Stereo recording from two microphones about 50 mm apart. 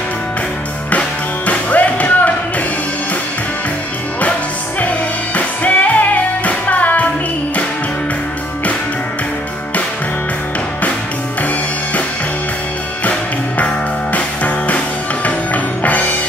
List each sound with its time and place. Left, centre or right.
0.9 s music: left
4.2 s music: left
14.1 s music: left